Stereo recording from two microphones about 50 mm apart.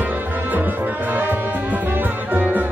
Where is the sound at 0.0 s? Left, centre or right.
Right.